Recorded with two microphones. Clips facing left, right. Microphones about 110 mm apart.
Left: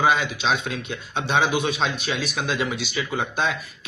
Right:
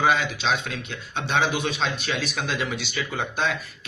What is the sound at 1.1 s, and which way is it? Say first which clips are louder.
Speech: left 2 dB; 15° left (ahead or behind).